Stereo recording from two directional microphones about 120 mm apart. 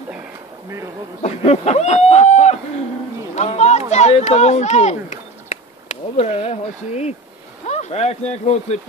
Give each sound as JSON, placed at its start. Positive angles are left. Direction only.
{"t": 1.2, "sound": "speech", "side_deg": 65}
{"t": 3.3, "sound": "a sound", "side_deg": 70}
{"t": 3.9, "sound": "speech", "side_deg": 70}